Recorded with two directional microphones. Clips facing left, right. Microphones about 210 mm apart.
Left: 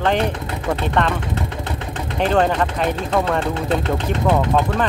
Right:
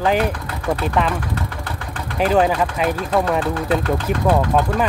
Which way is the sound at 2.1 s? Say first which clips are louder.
Right 1 dB; 5° right (ahead or behind).